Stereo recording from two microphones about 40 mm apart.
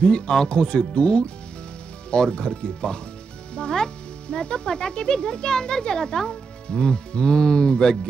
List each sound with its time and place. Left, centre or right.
0.5 s speech: left